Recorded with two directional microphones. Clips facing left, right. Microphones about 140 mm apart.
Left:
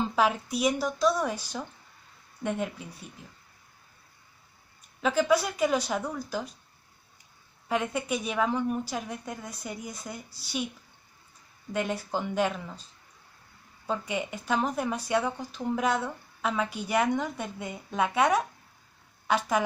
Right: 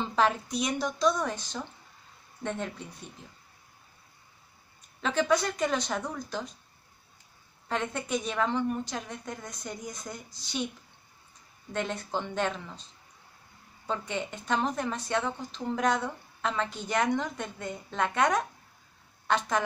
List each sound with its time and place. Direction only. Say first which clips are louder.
0.0 s a woman's voice: left 1 dB; 5° left (ahead or behind)
5.0 s speech: left 2 dB; 5° left (ahead or behind)
7.6 s speech: left 3 dB; 10° left (ahead or behind)
11.7 s speech: left 2 dB; 10° left (ahead or behind)
13.8 s speech: left 2 dB; 10° left (ahead or behind)